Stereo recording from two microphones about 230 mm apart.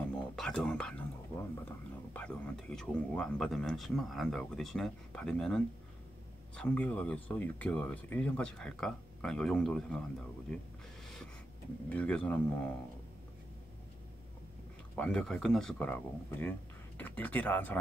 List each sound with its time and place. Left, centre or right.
0.4 s speech: centre
11.9 s speech: centre
15.0 s speech: centre